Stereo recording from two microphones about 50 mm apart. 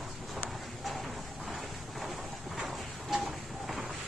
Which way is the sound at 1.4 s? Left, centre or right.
Centre.